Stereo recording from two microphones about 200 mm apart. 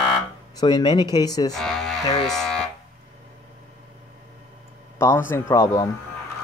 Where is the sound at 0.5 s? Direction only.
20° left (ahead or behind).